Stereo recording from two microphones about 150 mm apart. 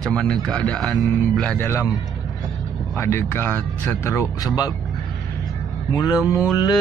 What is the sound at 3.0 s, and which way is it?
Speech, 15° left (ahead or behind).